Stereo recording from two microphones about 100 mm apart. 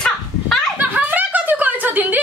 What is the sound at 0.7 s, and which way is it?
Chuckle, 20° right (ahead or behind).